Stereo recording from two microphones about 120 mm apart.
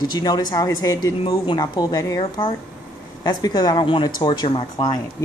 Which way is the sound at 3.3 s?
35° left (ahead or behind).